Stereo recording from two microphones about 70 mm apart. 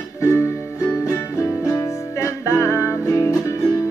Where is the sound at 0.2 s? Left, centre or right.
Left.